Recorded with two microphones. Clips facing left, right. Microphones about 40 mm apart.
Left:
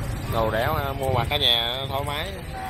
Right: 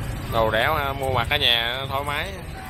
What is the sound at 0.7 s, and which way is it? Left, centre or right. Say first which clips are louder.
Speech: right 3 dB; right.